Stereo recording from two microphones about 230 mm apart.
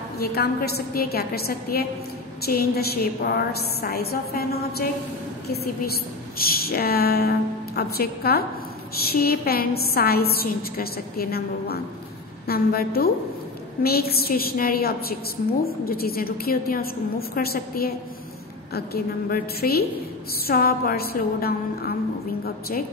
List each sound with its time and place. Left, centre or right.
0.2 s a woman's voice: left